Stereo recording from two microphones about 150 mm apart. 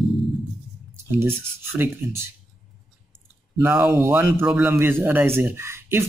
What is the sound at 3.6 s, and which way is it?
Speech, 10° right (ahead or behind).